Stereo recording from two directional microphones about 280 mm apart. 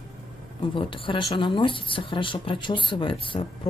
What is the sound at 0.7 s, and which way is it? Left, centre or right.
Speech, centre.